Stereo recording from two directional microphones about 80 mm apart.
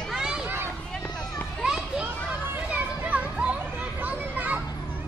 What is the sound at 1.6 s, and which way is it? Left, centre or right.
Children playing, centre.